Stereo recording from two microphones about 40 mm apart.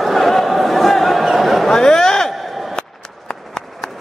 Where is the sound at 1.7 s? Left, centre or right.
Centre.